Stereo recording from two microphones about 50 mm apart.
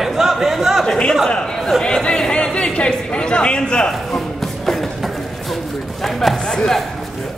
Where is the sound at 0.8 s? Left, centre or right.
Centre.